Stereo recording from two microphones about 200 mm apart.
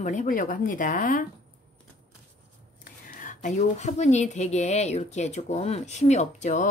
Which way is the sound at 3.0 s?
40° left (ahead or behind).